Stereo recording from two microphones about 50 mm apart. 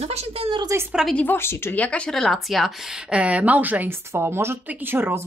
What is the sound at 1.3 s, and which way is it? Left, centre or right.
Speech, left.